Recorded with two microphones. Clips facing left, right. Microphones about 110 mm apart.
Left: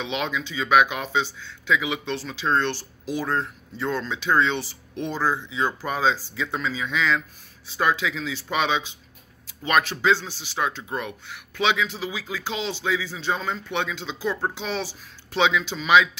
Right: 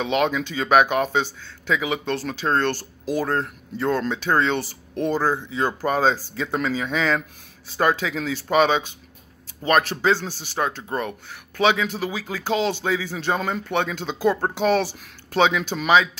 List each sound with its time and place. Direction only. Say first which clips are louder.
0.0 s speech: right 6 dB; 45° right (ahead or behind)